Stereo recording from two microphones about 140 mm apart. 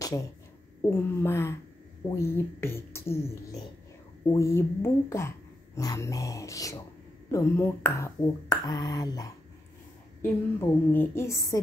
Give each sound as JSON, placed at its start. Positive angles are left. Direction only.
{"t": 0.0, "sound": "speech", "side_deg": 25}
{"t": 10.2, "sound": "speech", "side_deg": 15}